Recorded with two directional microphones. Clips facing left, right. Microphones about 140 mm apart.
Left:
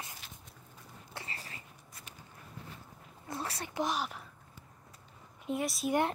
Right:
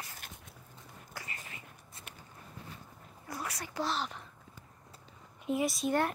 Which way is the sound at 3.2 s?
25° left (ahead or behind).